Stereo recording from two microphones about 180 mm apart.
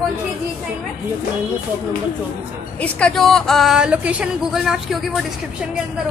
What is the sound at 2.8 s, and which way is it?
Speech, 5° left (ahead or behind).